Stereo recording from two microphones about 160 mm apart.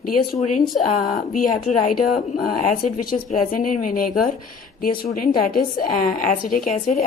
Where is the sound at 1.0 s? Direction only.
55° left (ahead or behind).